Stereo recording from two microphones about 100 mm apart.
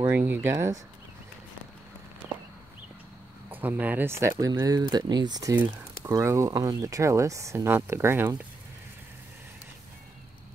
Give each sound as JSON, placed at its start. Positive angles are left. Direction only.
{"t": 0.3, "sound": "speech", "side_deg": -25}
{"t": 3.6, "sound": "speech", "side_deg": -20}
{"t": 4.5, "sound": "speech", "side_deg": -40}
{"t": 4.8, "sound": "speech", "side_deg": -50}